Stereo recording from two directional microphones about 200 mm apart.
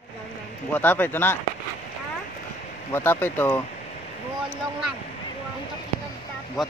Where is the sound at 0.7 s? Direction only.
10° left (ahead or behind).